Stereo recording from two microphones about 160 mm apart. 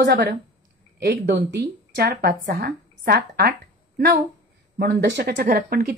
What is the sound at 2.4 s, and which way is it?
A woman's voice, 75° right (ahead or behind).